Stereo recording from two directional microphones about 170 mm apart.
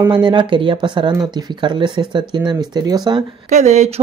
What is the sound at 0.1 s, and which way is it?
Speech, 25° right (ahead or behind).